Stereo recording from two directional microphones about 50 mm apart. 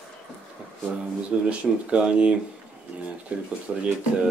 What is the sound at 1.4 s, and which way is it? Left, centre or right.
Speech, right.